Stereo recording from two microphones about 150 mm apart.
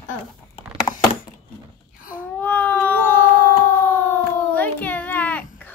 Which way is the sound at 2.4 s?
10° left (ahead or behind).